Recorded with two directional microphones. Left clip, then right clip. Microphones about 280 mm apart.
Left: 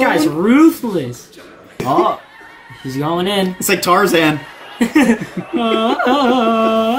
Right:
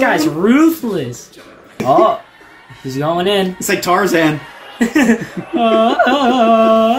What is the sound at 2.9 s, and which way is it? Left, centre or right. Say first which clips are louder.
Carnatic music: right 3 dB; centre.